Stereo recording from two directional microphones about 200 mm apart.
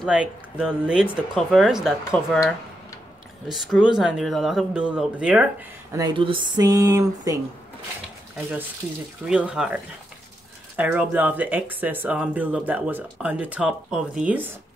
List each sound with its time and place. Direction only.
0.0 s speech: 5° right (ahead or behind)
5.9 s speech: 25° right (ahead or behind)
9.3 s speech: 5° right (ahead or behind)
10.8 s speech: 10° right (ahead or behind)